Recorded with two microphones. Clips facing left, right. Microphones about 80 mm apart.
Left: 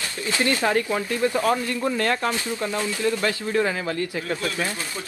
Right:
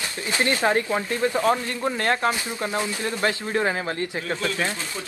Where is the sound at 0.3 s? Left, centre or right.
Right.